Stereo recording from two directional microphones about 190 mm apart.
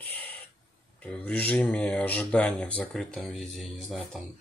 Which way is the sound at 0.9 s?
5° left (ahead or behind).